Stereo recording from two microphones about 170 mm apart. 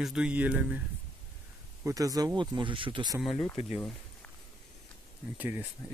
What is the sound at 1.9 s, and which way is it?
Speech, 20° right (ahead or behind).